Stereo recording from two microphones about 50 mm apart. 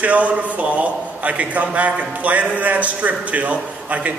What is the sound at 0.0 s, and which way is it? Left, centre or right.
A man's voice, right.